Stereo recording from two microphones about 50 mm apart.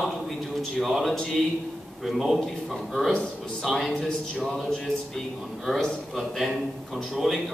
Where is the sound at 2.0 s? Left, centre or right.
Centre.